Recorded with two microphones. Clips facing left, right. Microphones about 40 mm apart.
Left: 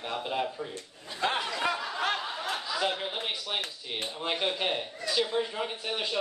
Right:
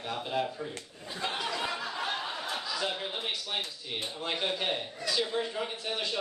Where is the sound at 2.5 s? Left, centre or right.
Left.